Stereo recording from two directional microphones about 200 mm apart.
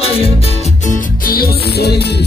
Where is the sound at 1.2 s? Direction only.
50° left (ahead or behind).